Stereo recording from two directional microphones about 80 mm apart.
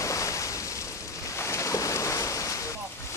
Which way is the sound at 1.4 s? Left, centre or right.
Left.